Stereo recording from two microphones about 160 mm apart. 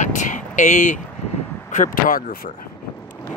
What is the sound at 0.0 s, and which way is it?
Vehicle, 50° left (ahead or behind).